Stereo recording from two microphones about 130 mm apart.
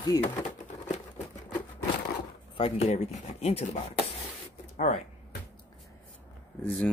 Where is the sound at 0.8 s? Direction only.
65° left (ahead or behind).